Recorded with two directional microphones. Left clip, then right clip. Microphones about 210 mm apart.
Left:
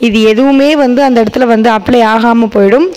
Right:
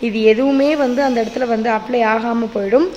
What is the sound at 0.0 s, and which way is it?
A woman's voice, 45° left (ahead or behind).